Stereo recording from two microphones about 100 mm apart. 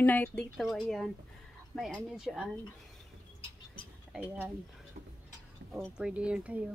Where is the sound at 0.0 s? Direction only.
20° left (ahead or behind).